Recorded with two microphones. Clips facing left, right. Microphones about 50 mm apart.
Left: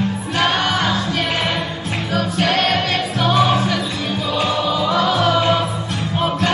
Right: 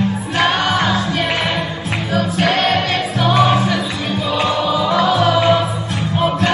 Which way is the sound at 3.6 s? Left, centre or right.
Centre.